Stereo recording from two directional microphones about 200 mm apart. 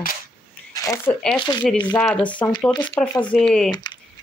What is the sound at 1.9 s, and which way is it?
Speech, 5° left (ahead or behind).